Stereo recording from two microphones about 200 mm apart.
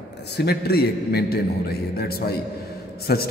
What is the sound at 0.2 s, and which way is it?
A man's voice, 55° left (ahead or behind).